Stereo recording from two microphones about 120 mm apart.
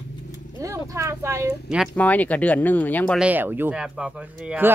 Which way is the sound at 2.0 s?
15° left (ahead or behind).